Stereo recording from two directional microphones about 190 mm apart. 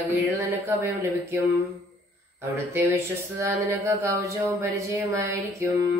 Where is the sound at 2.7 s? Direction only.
15° right (ahead or behind).